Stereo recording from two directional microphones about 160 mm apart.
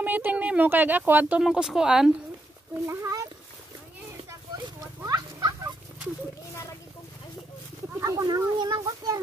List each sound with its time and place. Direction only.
0.0 s speech: 10° right (ahead or behind)
2.7 s speech: 15° right (ahead or behind)
4.6 s a sound: 25° right (ahead or behind)
8.0 s speech: 20° right (ahead or behind)